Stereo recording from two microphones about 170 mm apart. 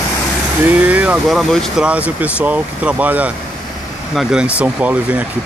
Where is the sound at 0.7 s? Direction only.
10° right (ahead or behind).